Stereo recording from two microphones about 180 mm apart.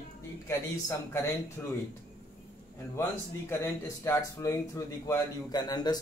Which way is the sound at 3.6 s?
15° left (ahead or behind).